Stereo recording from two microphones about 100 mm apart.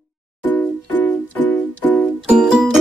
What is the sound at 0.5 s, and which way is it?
Music, 15° left (ahead or behind).